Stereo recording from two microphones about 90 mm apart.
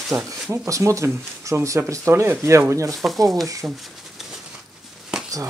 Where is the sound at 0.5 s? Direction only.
35° right (ahead or behind).